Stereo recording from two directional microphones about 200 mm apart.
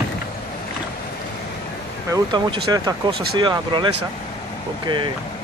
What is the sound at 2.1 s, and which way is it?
Speech, 20° right (ahead or behind).